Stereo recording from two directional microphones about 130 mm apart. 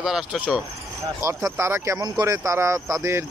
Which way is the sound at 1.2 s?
25° right (ahead or behind).